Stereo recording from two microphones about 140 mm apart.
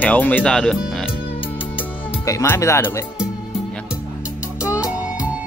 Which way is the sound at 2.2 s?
20° left (ahead or behind).